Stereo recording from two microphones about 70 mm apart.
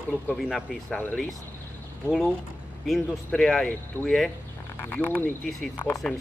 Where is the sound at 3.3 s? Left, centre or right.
Centre.